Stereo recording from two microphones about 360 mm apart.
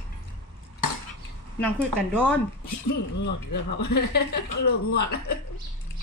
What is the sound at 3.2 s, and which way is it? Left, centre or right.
Speech, left.